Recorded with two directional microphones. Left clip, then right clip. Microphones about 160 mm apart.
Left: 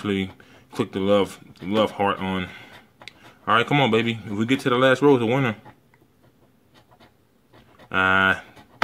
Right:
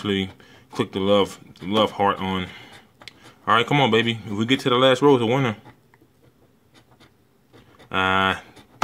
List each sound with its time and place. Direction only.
0.0 s speech: 5° right (ahead or behind)
7.9 s speech: 5° right (ahead or behind)